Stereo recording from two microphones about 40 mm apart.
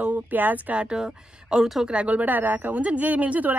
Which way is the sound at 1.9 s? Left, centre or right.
Right.